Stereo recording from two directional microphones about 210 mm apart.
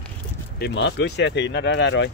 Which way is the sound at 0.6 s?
55° left (ahead or behind).